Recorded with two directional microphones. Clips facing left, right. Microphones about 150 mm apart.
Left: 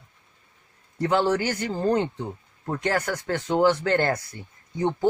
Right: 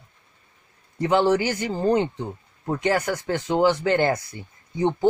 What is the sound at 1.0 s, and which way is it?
Speech, 15° right (ahead or behind).